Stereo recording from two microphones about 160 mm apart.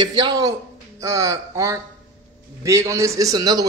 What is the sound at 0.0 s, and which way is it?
A man's voice, 25° right (ahead or behind).